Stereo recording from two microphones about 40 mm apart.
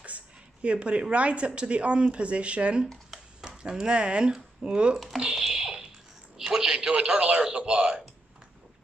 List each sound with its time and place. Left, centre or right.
0.0 s a woman's voice: right
3.3 s speech: centre
4.9 s speech: centre
5.3 s a sound: centre
7.0 s speech: right